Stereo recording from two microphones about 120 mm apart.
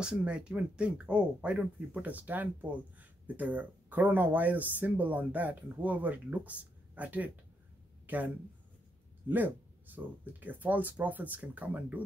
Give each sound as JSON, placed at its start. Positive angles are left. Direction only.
{"t": 0.0, "sound": "speech", "side_deg": -10}
{"t": 9.3, "sound": "speech", "side_deg": -15}